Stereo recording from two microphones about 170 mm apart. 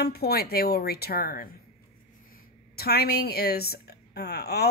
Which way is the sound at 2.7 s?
65° left (ahead or behind).